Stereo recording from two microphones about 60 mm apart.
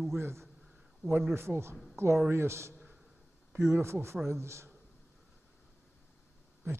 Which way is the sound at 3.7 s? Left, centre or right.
Right.